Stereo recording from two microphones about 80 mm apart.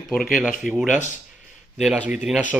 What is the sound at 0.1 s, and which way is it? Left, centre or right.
Speech, centre.